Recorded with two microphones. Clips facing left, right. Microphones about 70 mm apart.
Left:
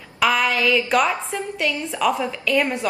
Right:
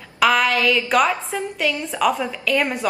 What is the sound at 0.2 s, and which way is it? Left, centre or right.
A woman's voice, centre.